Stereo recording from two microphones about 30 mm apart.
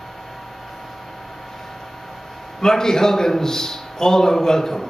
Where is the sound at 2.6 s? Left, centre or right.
Centre.